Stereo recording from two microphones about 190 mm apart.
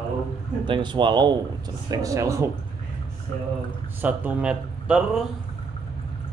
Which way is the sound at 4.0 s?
10° right (ahead or behind).